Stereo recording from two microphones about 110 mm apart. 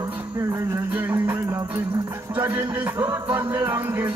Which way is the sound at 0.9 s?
20° right (ahead or behind).